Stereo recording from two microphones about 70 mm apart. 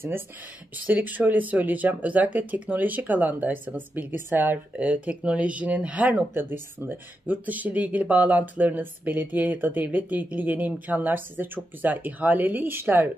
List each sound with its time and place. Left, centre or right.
0.8 s speech: right